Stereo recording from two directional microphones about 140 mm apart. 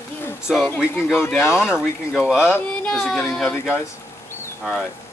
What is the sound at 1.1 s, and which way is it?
Speech, 15° left (ahead or behind).